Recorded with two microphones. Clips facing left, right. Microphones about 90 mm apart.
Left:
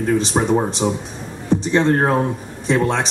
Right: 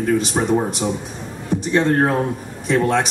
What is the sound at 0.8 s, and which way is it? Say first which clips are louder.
Speech: left 2 dB; 20° left (ahead or behind).